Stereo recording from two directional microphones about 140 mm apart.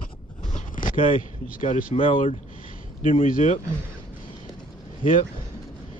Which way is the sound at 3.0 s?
70° left (ahead or behind).